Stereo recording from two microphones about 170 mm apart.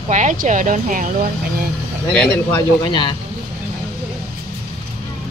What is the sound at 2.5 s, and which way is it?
Speech, 30° left (ahead or behind).